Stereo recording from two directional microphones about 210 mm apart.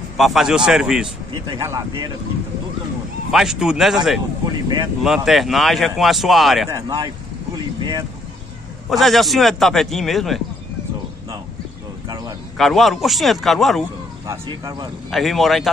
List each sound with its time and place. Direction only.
0.2 s speech: centre (ahead or behind)
1.3 s speech: 15° right (ahead or behind)
3.3 s speech: centre (ahead or behind)
4.5 s speech: 20° right (ahead or behind)
5.0 s speech: centre (ahead or behind)
6.7 s speech: 20° right (ahead or behind)
7.5 s boat: 20° right (ahead or behind)
8.8 s speech: centre (ahead or behind)
12.5 s speech: centre (ahead or behind)
14.2 s speech: 15° right (ahead or behind)
15.0 s speech: centre (ahead or behind)